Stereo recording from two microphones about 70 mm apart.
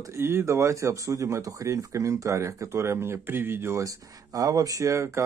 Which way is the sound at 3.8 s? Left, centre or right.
Right.